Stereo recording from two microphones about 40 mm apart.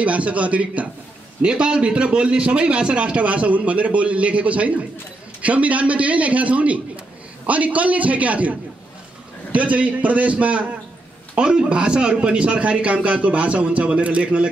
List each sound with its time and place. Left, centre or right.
0.0 s a man's voice: right
11.3 s a man's voice: right